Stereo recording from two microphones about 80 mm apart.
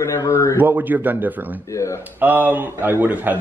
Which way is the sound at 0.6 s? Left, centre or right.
Right.